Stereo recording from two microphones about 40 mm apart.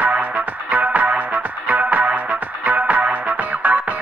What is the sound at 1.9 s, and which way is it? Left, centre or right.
Music, right.